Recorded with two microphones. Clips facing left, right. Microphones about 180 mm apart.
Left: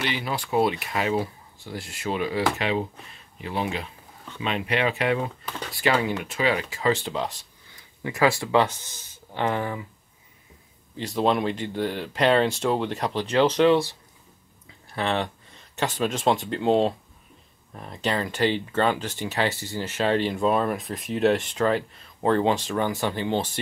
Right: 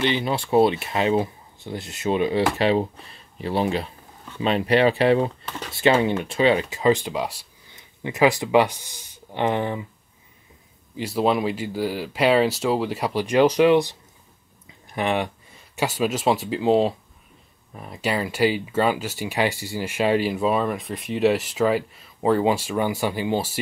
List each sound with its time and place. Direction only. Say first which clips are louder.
0.0 s speech: right 6 dB; 25° right (ahead or behind); by 7.4 s 10° right (ahead or behind)
7.7 s speech: right 1 dB; 20° right (ahead or behind)
11.0 s speech: right 2 dB; 10° right (ahead or behind)